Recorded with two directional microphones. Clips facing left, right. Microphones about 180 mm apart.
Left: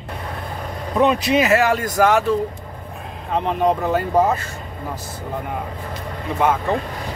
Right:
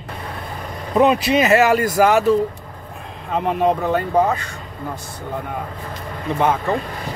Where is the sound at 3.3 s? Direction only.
5° right (ahead or behind).